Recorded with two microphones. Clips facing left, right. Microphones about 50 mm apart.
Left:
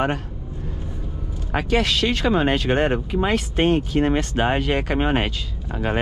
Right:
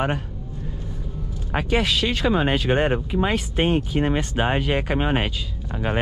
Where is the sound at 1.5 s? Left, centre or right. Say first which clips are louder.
Left 1 dB; centre.